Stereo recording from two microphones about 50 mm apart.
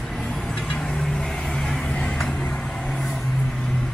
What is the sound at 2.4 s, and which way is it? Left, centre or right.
Vehicle, left.